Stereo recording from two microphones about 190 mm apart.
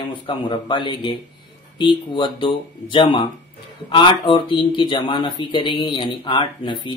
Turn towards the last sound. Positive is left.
turn(degrees=25)  # may be behind; listen again after turning